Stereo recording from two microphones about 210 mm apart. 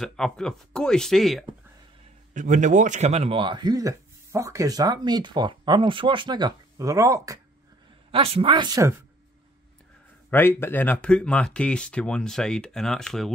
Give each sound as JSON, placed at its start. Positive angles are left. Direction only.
{"t": 0.0, "sound": "speech", "side_deg": 0}
{"t": 2.3, "sound": "a man's voice", "side_deg": -35}
{"t": 8.1, "sound": "a man's voice", "side_deg": -25}
{"t": 10.3, "sound": "speech", "side_deg": 10}